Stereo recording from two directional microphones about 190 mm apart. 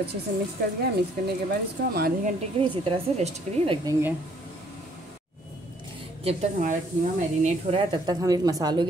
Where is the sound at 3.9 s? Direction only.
10° right (ahead or behind).